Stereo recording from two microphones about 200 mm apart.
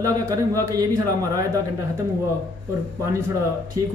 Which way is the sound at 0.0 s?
15° right (ahead or behind).